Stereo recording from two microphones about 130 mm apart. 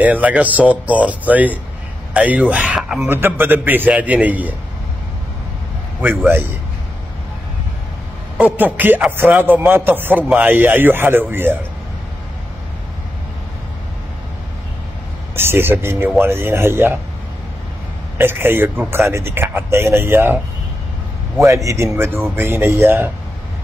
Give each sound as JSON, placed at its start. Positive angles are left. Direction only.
{"t": 0.0, "sound": "a man's voice", "side_deg": -10}
{"t": 5.9, "sound": "a man's voice", "side_deg": -15}
{"t": 8.4, "sound": "a man's voice", "side_deg": -15}
{"t": 15.3, "sound": "a man's voice", "side_deg": -20}
{"t": 18.1, "sound": "a man's voice", "side_deg": -15}
{"t": 21.6, "sound": "speech", "side_deg": -20}